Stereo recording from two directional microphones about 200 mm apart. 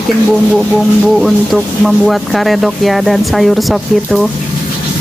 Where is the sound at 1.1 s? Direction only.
Centre (ahead or behind).